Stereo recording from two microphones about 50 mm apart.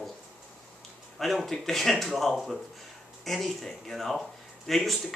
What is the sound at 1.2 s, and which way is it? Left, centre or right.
Speech, centre.